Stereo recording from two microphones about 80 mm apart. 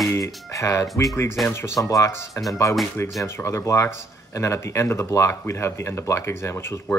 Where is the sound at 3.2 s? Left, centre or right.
Left.